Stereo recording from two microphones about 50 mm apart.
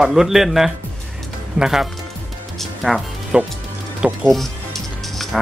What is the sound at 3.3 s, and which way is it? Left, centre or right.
Speech, right.